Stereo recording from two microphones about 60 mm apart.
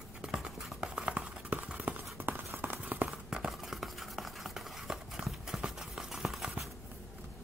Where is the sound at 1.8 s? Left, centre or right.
Right.